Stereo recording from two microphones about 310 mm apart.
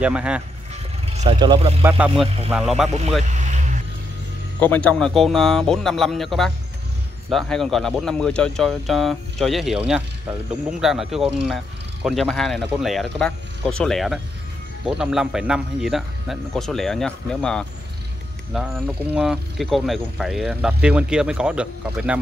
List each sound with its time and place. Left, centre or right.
0.0 s speech: centre
1.1 s speech: centre
3.3 s vehicle: right
4.6 s speech: centre
19.1 s speech: centre